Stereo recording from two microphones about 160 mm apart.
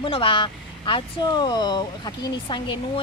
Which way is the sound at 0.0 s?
30° left (ahead or behind).